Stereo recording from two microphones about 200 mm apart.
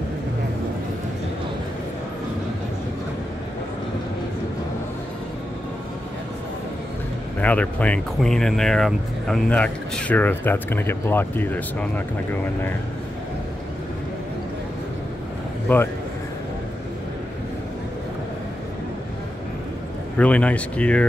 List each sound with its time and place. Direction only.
7.3 s speech: 5° left (ahead or behind)
15.7 s speech: 10° left (ahead or behind)
20.2 s speech: 5° left (ahead or behind)